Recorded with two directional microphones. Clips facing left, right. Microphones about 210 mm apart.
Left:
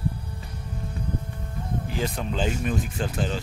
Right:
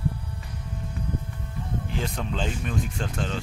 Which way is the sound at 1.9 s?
5° left (ahead or behind).